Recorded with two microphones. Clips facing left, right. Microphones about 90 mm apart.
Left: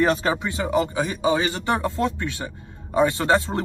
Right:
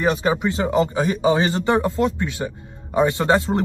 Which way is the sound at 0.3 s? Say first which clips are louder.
Right 3 dB; 25° right (ahead or behind).